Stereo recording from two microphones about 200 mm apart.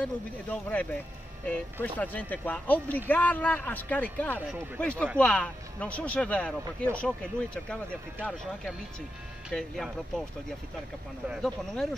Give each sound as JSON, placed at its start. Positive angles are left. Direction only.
{"t": 0.5, "sound": "speech", "side_deg": 10}
{"t": 11.2, "sound": "speech", "side_deg": 0}